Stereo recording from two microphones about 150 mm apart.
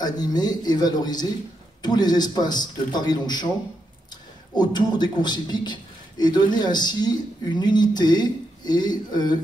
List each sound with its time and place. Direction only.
0.0 s a man's voice: 25° left (ahead or behind)